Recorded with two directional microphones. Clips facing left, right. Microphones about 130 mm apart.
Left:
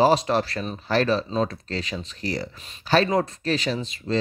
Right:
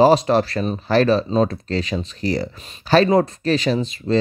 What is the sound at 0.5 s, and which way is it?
Speech, 35° right (ahead or behind).